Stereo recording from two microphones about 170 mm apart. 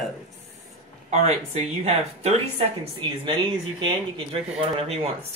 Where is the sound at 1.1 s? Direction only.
40° right (ahead or behind).